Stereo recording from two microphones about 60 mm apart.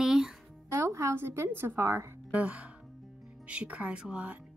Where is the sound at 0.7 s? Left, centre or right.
Right.